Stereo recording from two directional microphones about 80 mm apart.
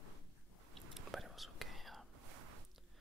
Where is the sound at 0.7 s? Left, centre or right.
Centre.